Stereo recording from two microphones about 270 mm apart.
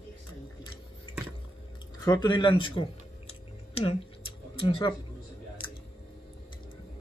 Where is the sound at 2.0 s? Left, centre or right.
Centre.